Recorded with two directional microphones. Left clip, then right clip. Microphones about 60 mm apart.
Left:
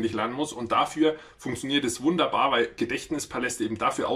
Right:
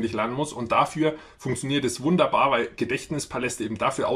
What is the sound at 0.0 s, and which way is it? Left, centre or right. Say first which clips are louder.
Speech: right 1 dB; right.